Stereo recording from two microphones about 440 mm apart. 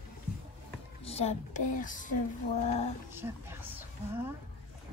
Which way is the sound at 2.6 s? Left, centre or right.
Centre.